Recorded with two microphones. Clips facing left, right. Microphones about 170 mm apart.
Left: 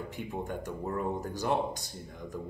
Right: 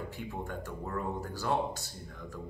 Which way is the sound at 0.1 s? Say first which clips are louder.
Left 3 dB; 20° left (ahead or behind).